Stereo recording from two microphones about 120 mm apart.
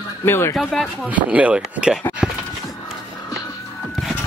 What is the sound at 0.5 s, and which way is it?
Speech, centre (ahead or behind).